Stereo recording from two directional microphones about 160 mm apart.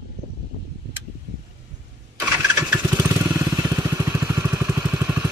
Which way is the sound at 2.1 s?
15° right (ahead or behind).